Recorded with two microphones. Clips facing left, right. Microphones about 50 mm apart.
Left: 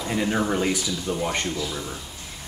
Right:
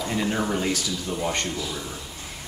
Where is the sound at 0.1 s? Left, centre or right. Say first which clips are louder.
Left 3 dB; centre.